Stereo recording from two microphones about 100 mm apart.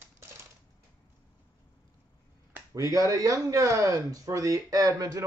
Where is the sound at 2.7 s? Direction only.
35° right (ahead or behind).